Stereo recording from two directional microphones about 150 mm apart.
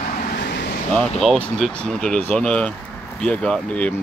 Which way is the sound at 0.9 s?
5° left (ahead or behind).